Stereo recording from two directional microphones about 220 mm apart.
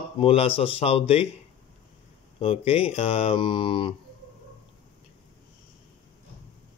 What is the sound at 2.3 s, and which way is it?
Mantra, 25° left (ahead or behind).